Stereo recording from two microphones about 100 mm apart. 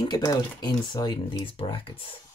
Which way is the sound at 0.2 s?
40° left (ahead or behind).